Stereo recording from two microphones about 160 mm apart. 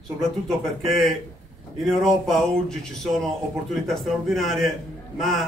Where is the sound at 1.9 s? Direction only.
Centre (ahead or behind).